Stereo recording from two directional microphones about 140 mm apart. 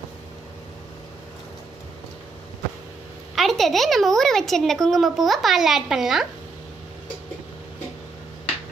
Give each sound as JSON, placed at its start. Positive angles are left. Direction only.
{"t": 3.3, "sound": "speech", "side_deg": 0}